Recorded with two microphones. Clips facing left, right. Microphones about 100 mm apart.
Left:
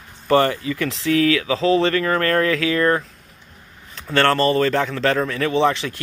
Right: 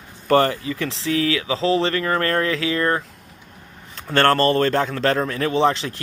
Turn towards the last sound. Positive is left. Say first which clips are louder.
# even
turn(degrees=-35)  # may be behind; listen again after turning